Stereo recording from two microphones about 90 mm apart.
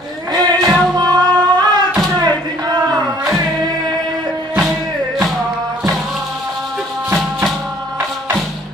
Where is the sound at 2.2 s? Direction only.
50° right (ahead or behind).